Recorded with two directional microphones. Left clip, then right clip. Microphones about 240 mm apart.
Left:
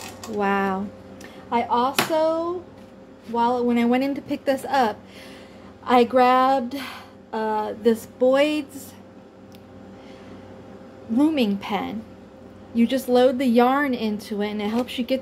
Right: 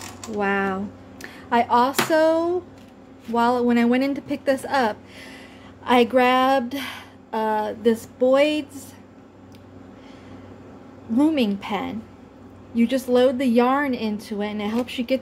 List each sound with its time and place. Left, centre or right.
0.4 s speech: centre
1.5 s speech: centre
11.1 s speech: centre